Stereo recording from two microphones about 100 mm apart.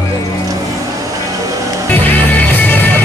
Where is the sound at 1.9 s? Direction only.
20° left (ahead or behind).